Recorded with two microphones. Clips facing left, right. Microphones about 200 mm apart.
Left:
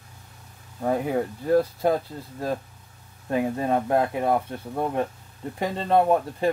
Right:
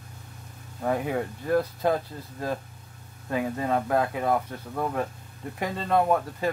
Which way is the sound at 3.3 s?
25° left (ahead or behind).